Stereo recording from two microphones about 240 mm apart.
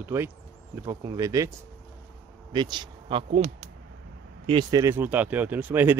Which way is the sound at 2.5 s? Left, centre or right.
Centre.